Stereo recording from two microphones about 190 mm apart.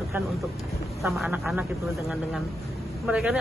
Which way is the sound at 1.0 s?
Centre (ahead or behind).